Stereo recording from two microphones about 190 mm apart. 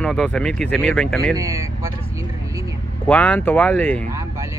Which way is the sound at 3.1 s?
10° left (ahead or behind).